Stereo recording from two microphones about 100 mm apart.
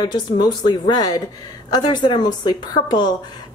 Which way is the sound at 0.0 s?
45° left (ahead or behind).